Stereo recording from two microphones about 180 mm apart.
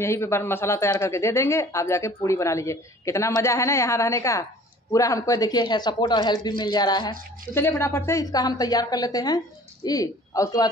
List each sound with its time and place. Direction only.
0.0 s a woman's voice: 15° left (ahead or behind)